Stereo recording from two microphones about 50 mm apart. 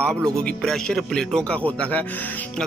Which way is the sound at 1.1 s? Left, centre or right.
Centre.